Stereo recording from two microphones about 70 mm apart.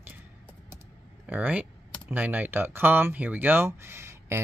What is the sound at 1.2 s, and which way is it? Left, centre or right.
Speech, centre.